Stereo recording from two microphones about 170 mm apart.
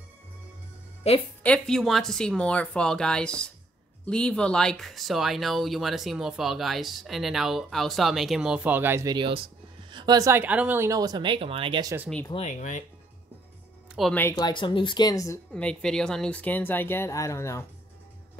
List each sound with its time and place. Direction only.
1.0 s speech: 40° left (ahead or behind)
1.4 s speech: 5° left (ahead or behind); by 11.9 s 30° right (ahead or behind)
12.3 s speech: 40° left (ahead or behind)
14.0 s speech: centre (ahead or behind)
14.3 s speech: 30° left (ahead or behind)
15.5 s speech: 5° left (ahead or behind)